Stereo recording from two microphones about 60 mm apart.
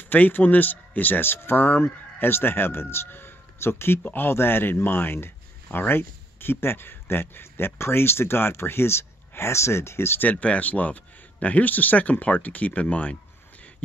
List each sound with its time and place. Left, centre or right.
0.1 s speech: left
4.0 s speech: left
10.2 s speech: left